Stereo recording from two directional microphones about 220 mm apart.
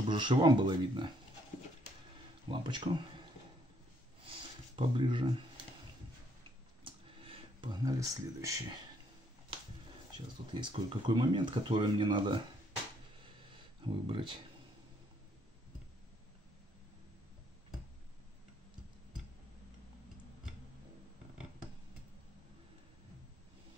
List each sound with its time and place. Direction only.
0.1 s speech: 20° right (ahead or behind)
2.4 s speech: 20° right (ahead or behind)
4.3 s a sound: 20° right (ahead or behind)
6.8 s a sound: 20° right (ahead or behind)
10.1 s speech: 20° right (ahead or behind)
13.8 s speech: 20° right (ahead or behind)